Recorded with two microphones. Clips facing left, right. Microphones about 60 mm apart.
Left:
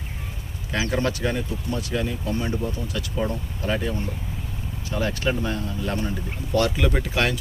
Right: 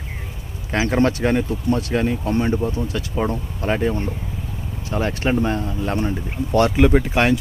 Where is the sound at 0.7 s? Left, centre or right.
Right.